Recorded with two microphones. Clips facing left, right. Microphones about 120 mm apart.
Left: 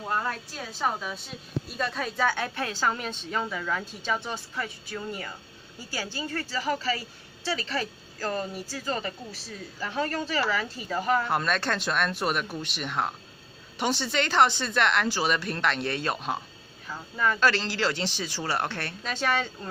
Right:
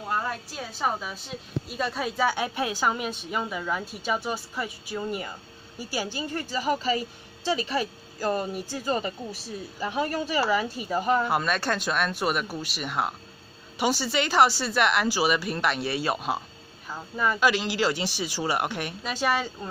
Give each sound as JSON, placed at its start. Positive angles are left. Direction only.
{"t": 0.7, "sound": "a woman's voice", "side_deg": -5}
{"t": 11.2, "sound": "a woman's voice", "side_deg": -5}